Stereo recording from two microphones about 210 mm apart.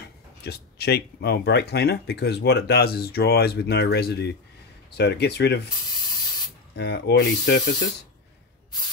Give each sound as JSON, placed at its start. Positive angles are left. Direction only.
{"t": 0.4, "sound": "speech", "side_deg": 50}
{"t": 6.7, "sound": "speech", "side_deg": 50}